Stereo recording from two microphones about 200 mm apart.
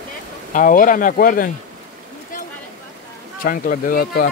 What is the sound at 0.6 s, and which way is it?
Speech, 40° left (ahead or behind).